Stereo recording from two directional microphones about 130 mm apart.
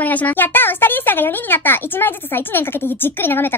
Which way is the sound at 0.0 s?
10° left (ahead or behind).